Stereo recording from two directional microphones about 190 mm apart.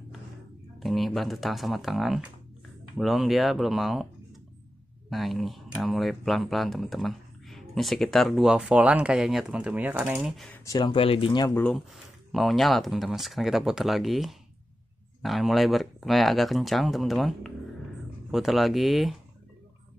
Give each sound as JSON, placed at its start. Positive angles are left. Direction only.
{"t": 0.7, "sound": "speech", "side_deg": 0}
{"t": 5.1, "sound": "speech", "side_deg": 0}
{"t": 10.6, "sound": "speech", "side_deg": 20}
{"t": 11.5, "sound": "speech", "side_deg": 5}